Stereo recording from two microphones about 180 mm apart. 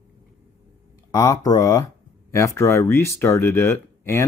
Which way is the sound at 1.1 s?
20° left (ahead or behind).